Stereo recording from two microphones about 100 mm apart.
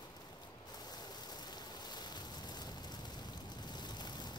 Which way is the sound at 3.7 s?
45° left (ahead or behind).